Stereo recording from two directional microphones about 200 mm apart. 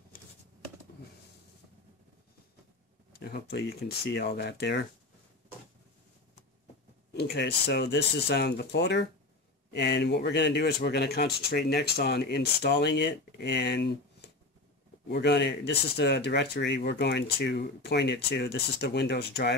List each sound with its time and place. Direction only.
3.1 s speech: 50° left (ahead or behind)
7.2 s speech: 55° left (ahead or behind)